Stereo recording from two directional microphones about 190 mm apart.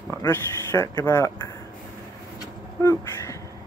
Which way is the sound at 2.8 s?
15° left (ahead or behind).